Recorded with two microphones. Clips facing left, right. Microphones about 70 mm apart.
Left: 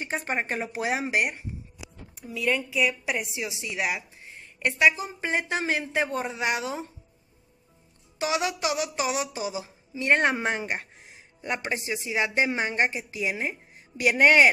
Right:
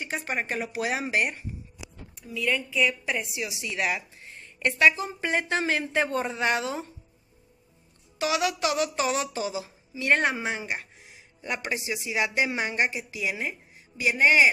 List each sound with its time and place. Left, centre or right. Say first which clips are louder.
0.0 s speech: left 2 dB; left; by 6.9 s centre
8.2 s speech: right 1 dB; left
10.3 s speech: left 3 dB; left
13.9 s speech: left 2 dB; left